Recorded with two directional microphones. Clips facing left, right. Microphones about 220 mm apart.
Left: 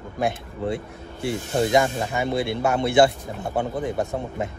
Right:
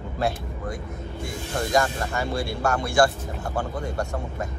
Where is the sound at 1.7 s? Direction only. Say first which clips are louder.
Left 3 dB; 20° left (ahead or behind).